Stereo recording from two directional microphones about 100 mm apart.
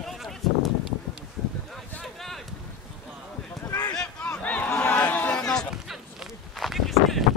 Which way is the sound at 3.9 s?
10° left (ahead or behind).